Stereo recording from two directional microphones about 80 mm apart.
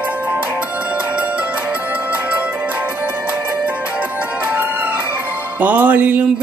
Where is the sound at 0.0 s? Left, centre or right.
Centre.